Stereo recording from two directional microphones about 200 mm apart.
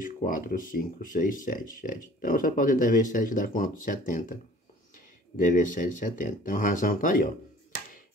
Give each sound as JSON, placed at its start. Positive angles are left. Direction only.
{"t": 0.0, "sound": "speech", "side_deg": 45}